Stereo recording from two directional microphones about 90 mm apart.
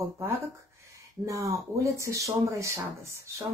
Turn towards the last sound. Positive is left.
turn(degrees=-30)  # may be behind; listen again after turning